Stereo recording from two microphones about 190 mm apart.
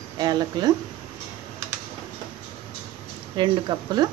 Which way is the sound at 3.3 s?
25° right (ahead or behind).